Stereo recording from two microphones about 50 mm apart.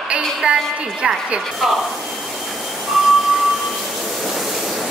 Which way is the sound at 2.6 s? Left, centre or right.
Centre.